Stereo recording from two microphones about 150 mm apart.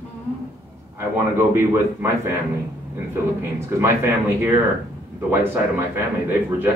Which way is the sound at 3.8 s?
15° right (ahead or behind).